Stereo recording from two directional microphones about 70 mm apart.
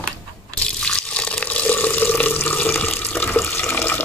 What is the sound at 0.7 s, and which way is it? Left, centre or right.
Water, centre.